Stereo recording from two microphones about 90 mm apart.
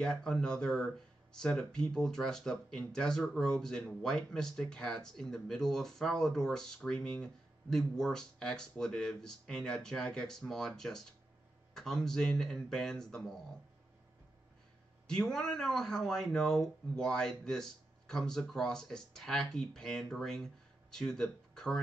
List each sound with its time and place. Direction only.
0.0 s speech: 5° left (ahead or behind)
15.0 s speech: 5° left (ahead or behind)